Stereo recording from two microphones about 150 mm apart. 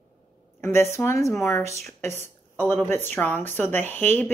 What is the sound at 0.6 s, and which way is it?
Speech, 15° left (ahead or behind).